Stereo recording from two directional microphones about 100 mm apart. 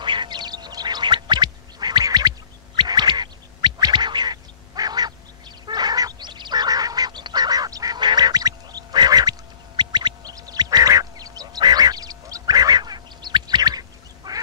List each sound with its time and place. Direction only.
0.0 s gargling: 50° right (ahead or behind)
5.7 s fowl: 45° right (ahead or behind)
9.8 s duck: 45° right (ahead or behind)